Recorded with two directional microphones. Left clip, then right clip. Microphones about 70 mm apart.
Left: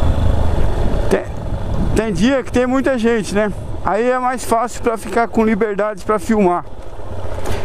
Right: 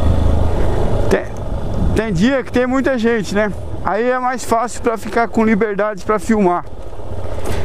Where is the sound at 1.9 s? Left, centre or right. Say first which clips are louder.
Even; left.